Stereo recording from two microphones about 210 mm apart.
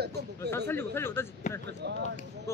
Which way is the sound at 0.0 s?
50° right (ahead or behind).